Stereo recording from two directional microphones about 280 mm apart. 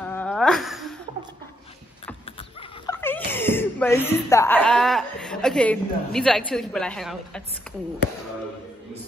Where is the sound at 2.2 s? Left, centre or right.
Centre.